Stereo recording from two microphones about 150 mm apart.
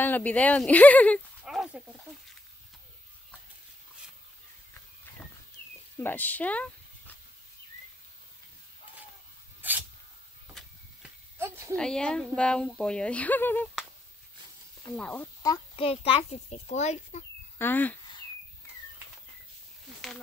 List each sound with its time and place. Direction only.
0.0 s speech: 10° left (ahead or behind)
1.4 s speech: 5° right (ahead or behind)
5.9 s speech: 10° left (ahead or behind)
9.6 s spray: 10° right (ahead or behind)
11.3 s a sound: 15° right (ahead or behind)
11.7 s speech: 5° left (ahead or behind)
15.0 s speech: 10° left (ahead or behind)
15.7 s a child's voice: 40° left (ahead or behind)
17.6 s speech: 15° left (ahead or behind)